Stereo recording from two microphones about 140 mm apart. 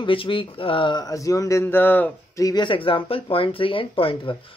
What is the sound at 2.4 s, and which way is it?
Speech, 25° left (ahead or behind).